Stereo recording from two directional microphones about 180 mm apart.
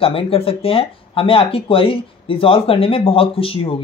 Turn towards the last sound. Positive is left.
turn(degrees=30)  # may be behind; listen again after turning